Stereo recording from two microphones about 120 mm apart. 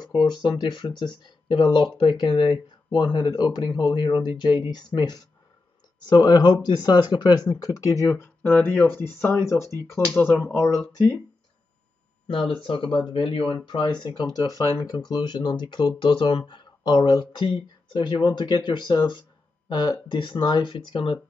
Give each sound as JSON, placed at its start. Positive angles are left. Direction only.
{"t": 0.4, "sound": "speech", "side_deg": 40}
{"t": 12.3, "sound": "speech", "side_deg": 50}